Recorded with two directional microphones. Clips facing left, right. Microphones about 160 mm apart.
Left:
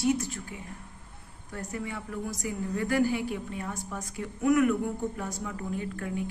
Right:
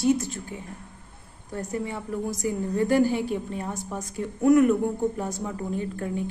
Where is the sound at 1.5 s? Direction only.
30° right (ahead or behind).